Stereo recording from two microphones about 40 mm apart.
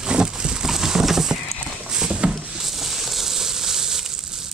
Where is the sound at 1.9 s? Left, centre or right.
Right.